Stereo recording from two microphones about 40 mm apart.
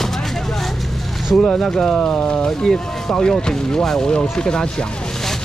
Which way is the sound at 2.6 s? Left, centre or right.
Centre.